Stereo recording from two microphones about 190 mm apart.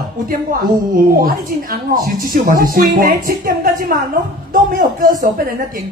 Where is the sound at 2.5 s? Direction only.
45° right (ahead or behind).